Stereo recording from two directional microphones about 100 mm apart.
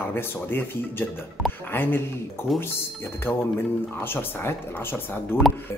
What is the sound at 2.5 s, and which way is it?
Speech, centre (ahead or behind).